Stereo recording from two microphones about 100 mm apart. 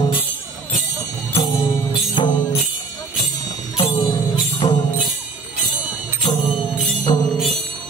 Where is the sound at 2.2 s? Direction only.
50° left (ahead or behind).